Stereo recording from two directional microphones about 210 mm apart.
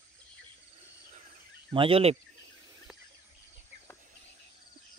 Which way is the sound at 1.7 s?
25° right (ahead or behind).